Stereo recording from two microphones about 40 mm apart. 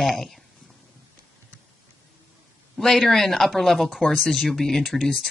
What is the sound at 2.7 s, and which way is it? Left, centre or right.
Speech, centre.